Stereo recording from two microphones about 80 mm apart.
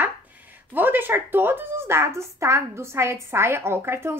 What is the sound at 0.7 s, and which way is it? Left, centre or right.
A woman's voice, right.